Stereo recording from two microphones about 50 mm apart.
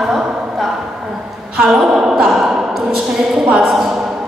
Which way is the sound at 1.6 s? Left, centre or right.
Centre.